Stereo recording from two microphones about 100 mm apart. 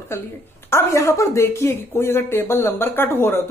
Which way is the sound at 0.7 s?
30° left (ahead or behind).